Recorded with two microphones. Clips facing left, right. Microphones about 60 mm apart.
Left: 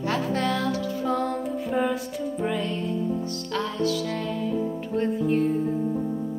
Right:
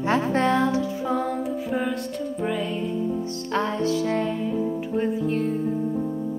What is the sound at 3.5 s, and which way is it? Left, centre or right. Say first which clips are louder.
Music: right 3 dB; right.